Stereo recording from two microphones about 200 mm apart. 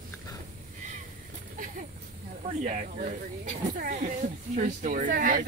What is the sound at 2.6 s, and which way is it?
Speech, 40° right (ahead or behind).